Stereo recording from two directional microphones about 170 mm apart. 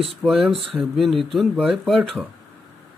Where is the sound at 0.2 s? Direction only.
Centre (ahead or behind).